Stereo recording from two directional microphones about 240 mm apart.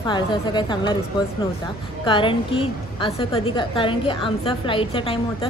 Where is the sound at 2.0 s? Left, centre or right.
Left.